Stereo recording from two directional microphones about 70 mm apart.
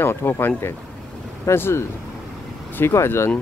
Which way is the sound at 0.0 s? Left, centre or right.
Left.